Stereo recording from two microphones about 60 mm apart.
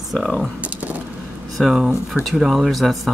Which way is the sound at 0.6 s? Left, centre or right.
Right.